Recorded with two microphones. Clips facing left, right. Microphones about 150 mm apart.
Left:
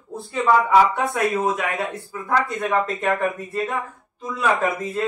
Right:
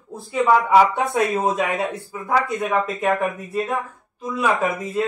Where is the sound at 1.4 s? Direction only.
25° right (ahead or behind).